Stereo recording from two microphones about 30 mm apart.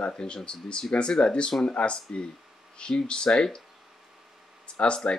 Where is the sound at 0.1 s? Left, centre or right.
Left.